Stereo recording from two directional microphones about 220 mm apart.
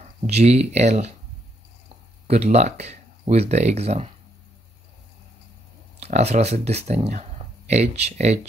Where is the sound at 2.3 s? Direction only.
30° right (ahead or behind).